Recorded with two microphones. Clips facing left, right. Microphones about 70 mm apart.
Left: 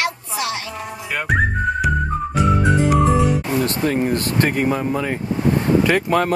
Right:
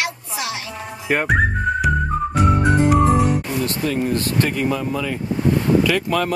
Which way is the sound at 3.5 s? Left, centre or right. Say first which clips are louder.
Left 3 dB; left.